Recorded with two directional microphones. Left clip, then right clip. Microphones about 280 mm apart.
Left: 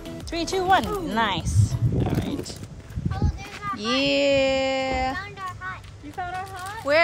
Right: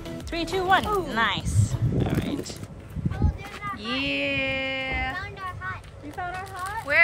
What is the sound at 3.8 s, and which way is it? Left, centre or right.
Speech, centre.